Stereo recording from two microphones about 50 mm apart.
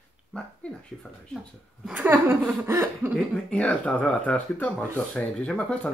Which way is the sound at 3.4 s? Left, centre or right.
Left.